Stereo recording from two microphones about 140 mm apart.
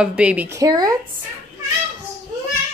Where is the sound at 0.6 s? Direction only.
25° right (ahead or behind).